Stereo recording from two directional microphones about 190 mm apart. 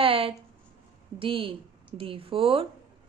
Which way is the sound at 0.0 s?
30° right (ahead or behind).